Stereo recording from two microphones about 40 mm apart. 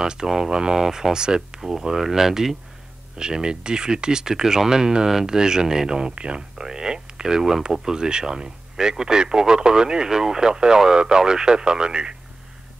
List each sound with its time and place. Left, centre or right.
0.0 s speech: centre
6.6 s speech: centre